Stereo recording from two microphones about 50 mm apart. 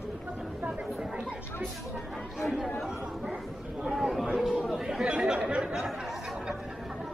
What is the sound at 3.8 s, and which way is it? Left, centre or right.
Speech, centre.